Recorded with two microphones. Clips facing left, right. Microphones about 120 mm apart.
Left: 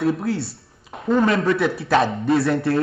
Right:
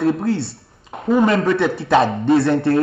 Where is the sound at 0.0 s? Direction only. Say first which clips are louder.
Right 3 dB; centre (ahead or behind).